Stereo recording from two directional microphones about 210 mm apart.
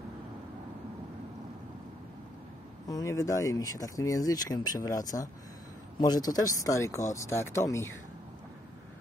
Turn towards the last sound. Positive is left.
turn(degrees=15)  # may be behind; listen again after turning